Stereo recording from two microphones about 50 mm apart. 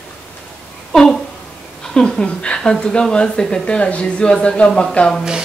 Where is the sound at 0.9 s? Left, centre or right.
Centre.